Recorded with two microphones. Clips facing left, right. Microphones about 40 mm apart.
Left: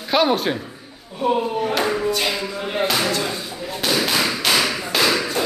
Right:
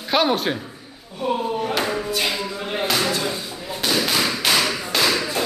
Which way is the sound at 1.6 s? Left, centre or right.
Centre.